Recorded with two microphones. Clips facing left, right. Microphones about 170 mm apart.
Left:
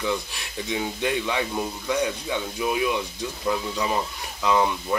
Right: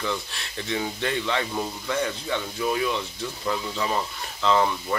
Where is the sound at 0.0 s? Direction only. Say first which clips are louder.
Left 3 dB; 10° left (ahead or behind).